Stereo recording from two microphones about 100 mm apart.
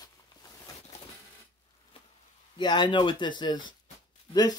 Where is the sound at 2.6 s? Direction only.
50° left (ahead or behind).